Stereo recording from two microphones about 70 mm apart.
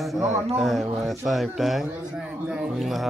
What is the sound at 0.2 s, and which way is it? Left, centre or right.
Speech, right.